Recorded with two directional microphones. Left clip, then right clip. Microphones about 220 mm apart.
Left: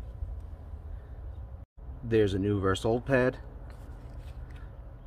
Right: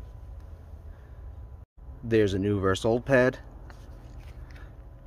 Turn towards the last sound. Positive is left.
turn(degrees=-30)  # may be behind; listen again after turning